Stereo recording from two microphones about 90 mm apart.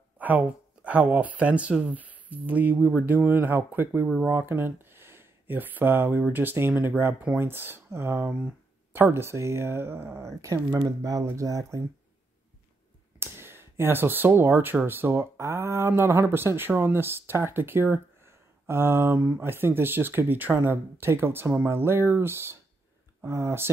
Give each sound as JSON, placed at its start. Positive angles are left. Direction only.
{"t": 0.2, "sound": "speech", "side_deg": -15}
{"t": 13.2, "sound": "speech", "side_deg": -25}
{"t": 19.1, "sound": "speech", "side_deg": -15}